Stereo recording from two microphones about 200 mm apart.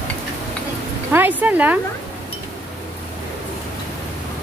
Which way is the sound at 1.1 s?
10° right (ahead or behind).